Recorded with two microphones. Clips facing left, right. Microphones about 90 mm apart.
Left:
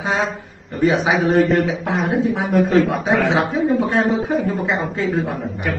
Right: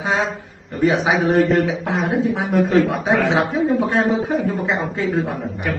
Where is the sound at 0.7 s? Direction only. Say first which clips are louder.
Even; centre (ahead or behind).